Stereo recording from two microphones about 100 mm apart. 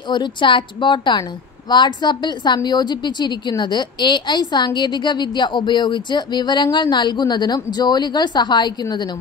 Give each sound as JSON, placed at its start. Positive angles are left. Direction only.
{"t": 0.1, "sound": "a woman's voice", "side_deg": 50}